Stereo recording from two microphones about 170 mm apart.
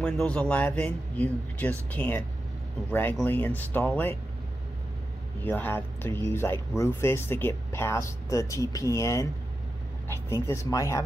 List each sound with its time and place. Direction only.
0.0 s speech: 5° left (ahead or behind)
5.4 s speech: 10° left (ahead or behind)